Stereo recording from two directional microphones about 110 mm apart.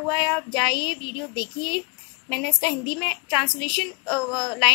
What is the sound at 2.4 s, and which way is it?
A woman's voice, centre (ahead or behind).